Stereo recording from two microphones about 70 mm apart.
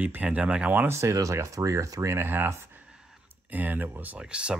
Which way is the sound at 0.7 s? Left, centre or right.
Right.